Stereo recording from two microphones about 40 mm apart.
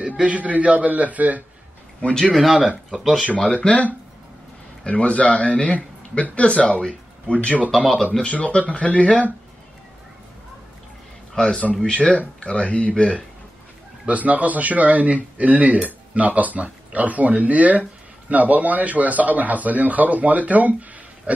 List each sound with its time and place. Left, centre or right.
0.0 s speech: right
3.0 s speech: centre
3.5 s speech: left
7.3 s speech: left
7.7 s speech: centre
8.2 s speech: left
11.3 s speech: left
14.0 s speech: right